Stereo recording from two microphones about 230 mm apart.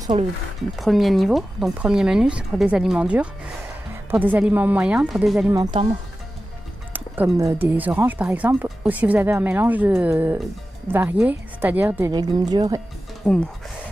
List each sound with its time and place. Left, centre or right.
0.1 s speech: right
0.7 s speech: centre
5.5 s speech: centre
6.9 s speech: centre
12.1 s speech: centre
13.2 s speech: centre